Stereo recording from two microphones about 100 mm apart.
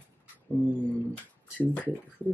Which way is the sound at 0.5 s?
15° left (ahead or behind).